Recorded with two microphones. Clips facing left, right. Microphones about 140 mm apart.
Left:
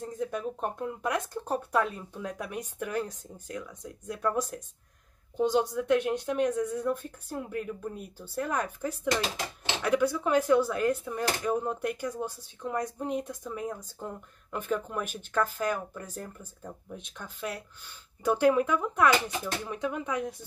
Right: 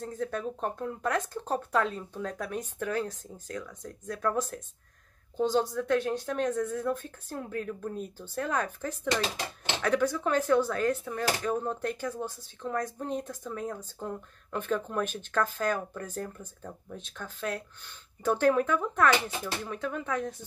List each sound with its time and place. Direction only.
0.0 s speech: 15° left (ahead or behind)